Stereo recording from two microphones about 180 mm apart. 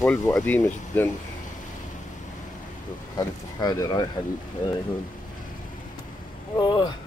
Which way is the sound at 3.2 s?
20° left (ahead or behind).